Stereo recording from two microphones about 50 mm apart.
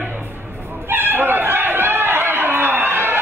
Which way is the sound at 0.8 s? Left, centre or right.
Right.